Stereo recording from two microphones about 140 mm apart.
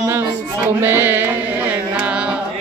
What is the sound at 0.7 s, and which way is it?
Music, 15° right (ahead or behind).